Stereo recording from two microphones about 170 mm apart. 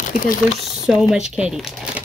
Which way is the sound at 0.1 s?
50° left (ahead or behind).